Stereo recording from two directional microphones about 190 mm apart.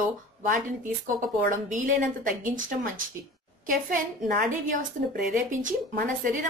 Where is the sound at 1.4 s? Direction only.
45° right (ahead or behind).